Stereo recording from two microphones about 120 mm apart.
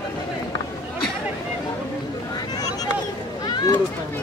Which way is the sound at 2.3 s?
35° left (ahead or behind).